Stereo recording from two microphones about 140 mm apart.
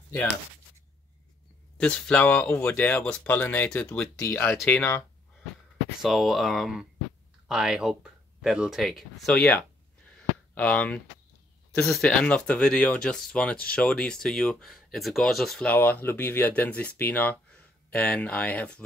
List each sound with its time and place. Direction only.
1.8 s speech: 5° left (ahead or behind)
5.9 s speech: centre (ahead or behind)